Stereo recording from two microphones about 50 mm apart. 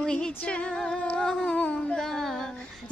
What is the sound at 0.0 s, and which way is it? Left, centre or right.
Music, centre.